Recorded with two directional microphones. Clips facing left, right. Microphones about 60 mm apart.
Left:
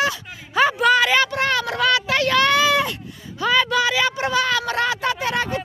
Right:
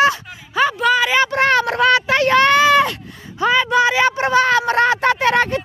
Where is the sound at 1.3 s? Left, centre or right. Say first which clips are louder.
Right 6 dB; right.